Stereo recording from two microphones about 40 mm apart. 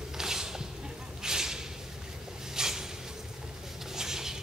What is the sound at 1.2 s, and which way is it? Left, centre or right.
Whip, centre.